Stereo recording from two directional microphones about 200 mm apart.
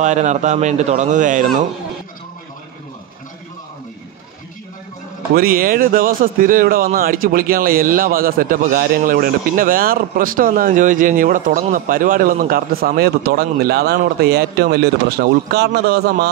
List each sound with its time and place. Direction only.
0.0 s a man's voice: 35° right (ahead or behind)
5.3 s speech: 45° right (ahead or behind)